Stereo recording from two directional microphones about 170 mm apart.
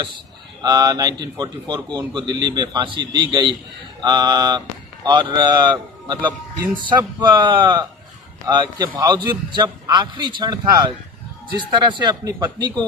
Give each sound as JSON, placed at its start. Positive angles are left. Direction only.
{"t": 0.6, "sound": "speech", "side_deg": -25}